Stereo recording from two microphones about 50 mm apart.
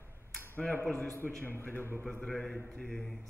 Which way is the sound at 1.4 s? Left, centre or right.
Left.